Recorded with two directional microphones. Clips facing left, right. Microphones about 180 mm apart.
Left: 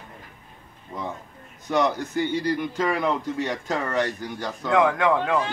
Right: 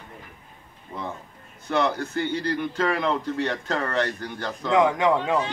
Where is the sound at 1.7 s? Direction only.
15° left (ahead or behind).